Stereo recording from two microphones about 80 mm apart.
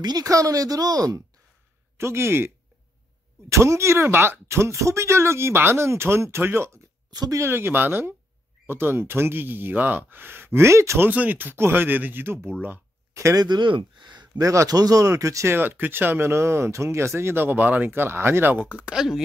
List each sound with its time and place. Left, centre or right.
0.0 s speech: right
2.0 s speech: right
7.1 s speech: right
7.3 s speech: right
11.1 s speech: right
13.1 s speech: right
13.4 s speech: right
14.4 s speech: right
15.5 s speech: right